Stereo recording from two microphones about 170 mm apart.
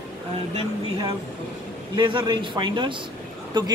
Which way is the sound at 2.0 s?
30° right (ahead or behind).